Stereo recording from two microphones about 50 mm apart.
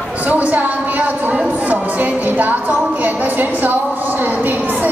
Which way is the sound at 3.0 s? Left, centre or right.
Right.